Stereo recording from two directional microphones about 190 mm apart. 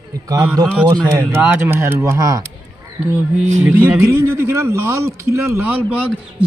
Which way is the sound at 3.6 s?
10° right (ahead or behind).